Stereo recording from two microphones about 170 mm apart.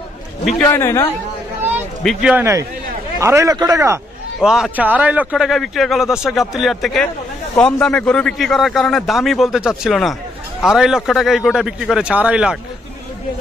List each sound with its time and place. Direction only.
0.7 s a man's voice: 15° left (ahead or behind)
2.0 s a man's voice: 5° right (ahead or behind)
3.2 s a man's voice: 15° right (ahead or behind)
4.4 s a man's voice: 5° right (ahead or behind)